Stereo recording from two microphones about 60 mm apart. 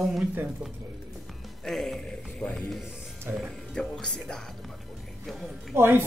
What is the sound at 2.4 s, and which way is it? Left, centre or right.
Speech, left.